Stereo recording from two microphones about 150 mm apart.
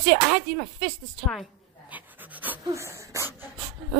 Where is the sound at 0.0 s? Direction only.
Centre (ahead or behind).